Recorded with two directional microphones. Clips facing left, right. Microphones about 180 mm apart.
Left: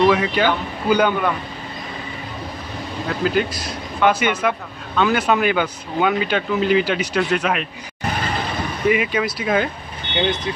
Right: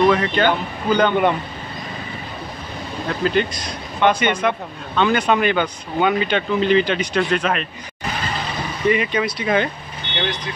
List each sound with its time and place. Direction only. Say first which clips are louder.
0.1 s speech: even; 5° left (ahead or behind)
3.1 s speech: even; 5° left (ahead or behind)
8.8 s speech: even; 5° left (ahead or behind)
10.1 s speech: left 4 dB; 20° left (ahead or behind)